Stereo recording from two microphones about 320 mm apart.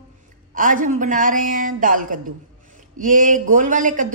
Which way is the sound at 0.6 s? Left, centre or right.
Right.